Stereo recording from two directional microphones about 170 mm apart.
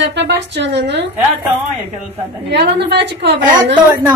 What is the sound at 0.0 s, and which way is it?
A woman's voice, 90° right.